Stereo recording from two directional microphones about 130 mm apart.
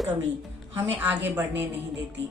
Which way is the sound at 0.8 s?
15° right (ahead or behind).